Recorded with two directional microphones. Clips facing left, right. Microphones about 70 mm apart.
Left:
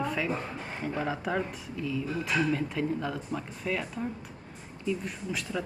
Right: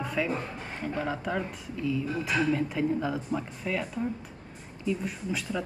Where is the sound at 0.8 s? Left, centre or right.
Centre.